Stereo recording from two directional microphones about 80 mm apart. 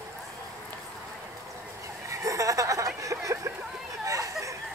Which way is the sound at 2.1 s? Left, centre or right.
Right.